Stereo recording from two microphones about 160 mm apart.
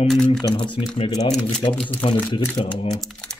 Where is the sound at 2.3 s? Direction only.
30° left (ahead or behind).